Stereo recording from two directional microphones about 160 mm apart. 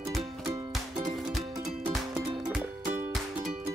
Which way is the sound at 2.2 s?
25° right (ahead or behind).